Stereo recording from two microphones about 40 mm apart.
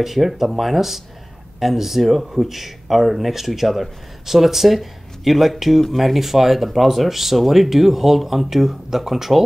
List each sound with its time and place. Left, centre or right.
0.0 s speech: centre